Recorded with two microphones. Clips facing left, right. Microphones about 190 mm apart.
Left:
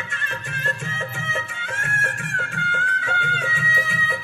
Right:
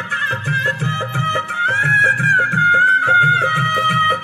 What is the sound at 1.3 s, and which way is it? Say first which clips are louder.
Music: right 6 dB; 65° right (ahead or behind).